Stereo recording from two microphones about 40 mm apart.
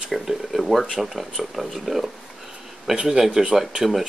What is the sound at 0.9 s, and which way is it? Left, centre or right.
A man's voice, centre.